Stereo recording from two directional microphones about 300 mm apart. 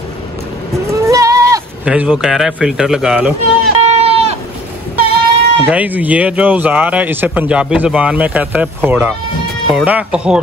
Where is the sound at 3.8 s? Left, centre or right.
Right.